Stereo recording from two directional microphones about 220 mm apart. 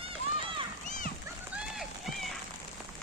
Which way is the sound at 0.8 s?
35° left (ahead or behind).